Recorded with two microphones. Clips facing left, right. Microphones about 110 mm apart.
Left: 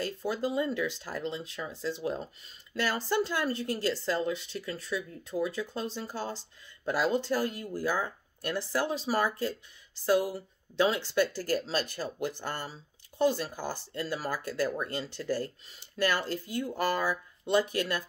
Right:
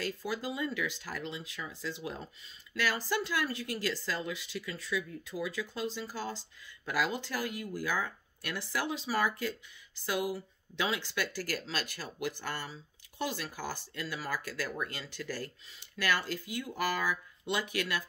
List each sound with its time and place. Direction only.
0.0 s speech: 30° left (ahead or behind)
12.4 s speech: 40° left (ahead or behind)
13.4 s speech: 30° left (ahead or behind)